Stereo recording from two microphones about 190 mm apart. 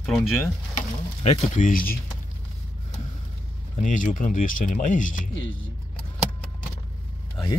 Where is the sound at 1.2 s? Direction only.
40° left (ahead or behind).